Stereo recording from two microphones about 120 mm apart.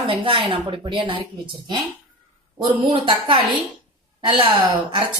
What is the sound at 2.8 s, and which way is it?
A woman's voice, 50° right (ahead or behind).